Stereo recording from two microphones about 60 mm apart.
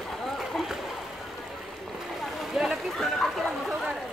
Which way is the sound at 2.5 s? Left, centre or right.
Centre.